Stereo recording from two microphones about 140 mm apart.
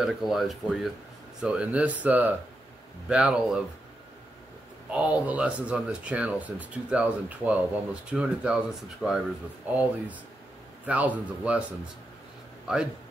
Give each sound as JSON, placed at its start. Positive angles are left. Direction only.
{"t": 0.0, "sound": "speech", "side_deg": 0}
{"t": 4.9, "sound": "speech", "side_deg": -10}
{"t": 12.7, "sound": "speech", "side_deg": -5}